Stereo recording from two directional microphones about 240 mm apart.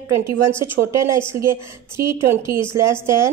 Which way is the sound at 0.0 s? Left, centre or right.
Right.